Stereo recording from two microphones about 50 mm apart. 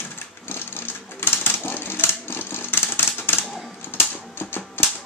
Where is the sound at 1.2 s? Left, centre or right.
Left.